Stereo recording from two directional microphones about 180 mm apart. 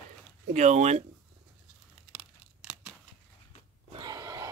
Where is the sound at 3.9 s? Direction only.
20° right (ahead or behind).